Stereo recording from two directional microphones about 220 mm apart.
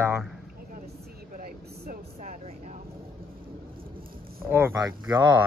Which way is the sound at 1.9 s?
30° right (ahead or behind).